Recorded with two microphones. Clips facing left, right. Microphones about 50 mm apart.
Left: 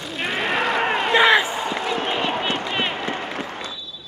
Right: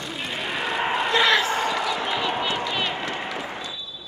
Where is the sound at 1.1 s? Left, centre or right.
Left.